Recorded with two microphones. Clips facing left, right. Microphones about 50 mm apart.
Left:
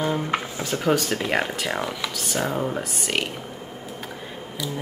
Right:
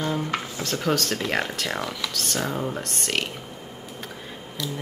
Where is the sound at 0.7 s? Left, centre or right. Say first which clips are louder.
Left 3 dB; centre.